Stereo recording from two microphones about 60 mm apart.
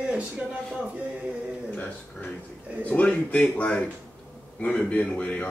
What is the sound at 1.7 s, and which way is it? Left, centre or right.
A man's voice, left.